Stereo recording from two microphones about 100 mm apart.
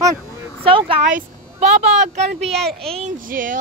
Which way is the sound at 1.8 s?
90° right.